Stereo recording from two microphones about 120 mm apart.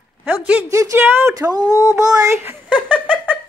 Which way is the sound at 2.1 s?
25° right (ahead or behind).